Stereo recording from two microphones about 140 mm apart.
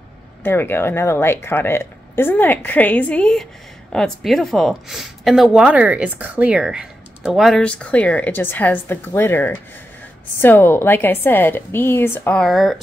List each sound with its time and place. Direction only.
0.4 s a woman's voice: 15° left (ahead or behind)